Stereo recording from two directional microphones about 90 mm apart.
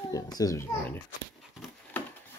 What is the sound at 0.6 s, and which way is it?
Speech, 25° left (ahead or behind).